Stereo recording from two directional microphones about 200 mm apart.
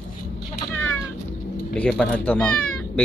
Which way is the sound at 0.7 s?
10° left (ahead or behind).